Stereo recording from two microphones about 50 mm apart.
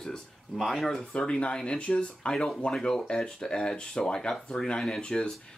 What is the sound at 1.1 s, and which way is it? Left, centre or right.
Speech, centre.